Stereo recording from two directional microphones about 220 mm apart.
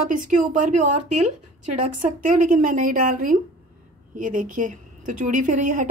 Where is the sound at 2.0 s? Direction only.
35° right (ahead or behind).